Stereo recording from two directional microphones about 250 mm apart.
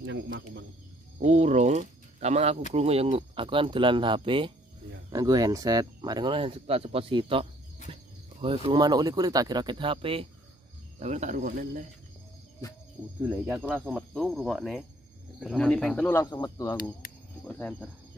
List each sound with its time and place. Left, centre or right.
0.0 s speech: right
1.2 s speech: right
13.2 s speech: centre